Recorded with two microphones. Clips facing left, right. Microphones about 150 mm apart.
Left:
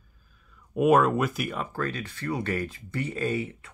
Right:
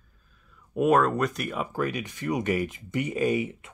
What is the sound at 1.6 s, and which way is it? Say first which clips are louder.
Speech: right 2 dB; 15° right (ahead or behind).